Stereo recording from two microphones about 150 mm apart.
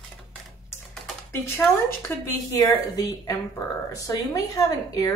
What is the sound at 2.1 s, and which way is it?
A woman's voice, 15° left (ahead or behind).